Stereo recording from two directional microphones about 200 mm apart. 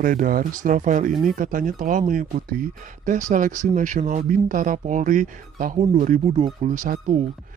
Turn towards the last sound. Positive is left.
turn(degrees=-40)  # may be behind; listen again after turning